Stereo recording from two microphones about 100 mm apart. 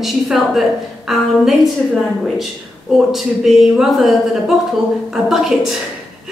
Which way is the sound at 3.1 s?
5° right (ahead or behind).